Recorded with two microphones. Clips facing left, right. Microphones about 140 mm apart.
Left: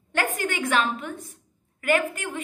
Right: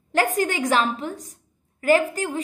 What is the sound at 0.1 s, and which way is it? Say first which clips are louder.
A woman's voice: right 5 dB; 35° right (ahead or behind).